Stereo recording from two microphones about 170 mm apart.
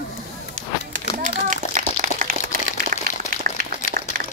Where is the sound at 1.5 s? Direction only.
50° right (ahead or behind).